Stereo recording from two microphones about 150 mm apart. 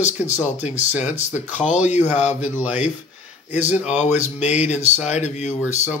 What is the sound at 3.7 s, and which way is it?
Speech, 50° left (ahead or behind).